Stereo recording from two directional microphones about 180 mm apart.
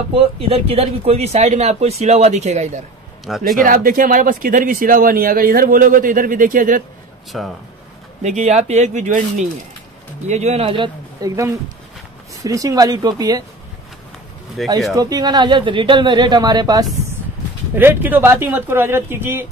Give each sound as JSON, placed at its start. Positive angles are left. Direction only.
{"t": 0.1, "sound": "speech", "side_deg": -35}
{"t": 3.3, "sound": "speech", "side_deg": 0}
{"t": 3.5, "sound": "speech", "side_deg": -45}
{"t": 7.3, "sound": "speech", "side_deg": 0}
{"t": 8.2, "sound": "speech", "side_deg": -40}
{"t": 14.6, "sound": "speech", "side_deg": 0}
{"t": 15.0, "sound": "speech", "side_deg": -20}
{"t": 17.7, "sound": "speech", "side_deg": -10}